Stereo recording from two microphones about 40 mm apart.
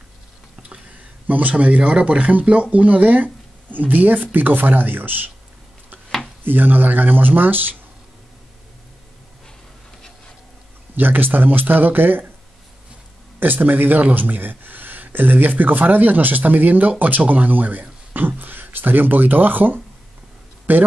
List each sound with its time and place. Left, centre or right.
1.2 s a sound: right
1.5 s speech: right
6.4 s speech: right
11.0 s speech: right
13.4 s speech: right